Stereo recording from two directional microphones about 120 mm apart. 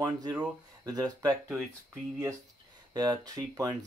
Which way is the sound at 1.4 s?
5° right (ahead or behind).